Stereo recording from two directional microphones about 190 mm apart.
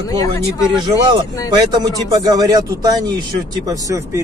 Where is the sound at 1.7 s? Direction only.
20° right (ahead or behind).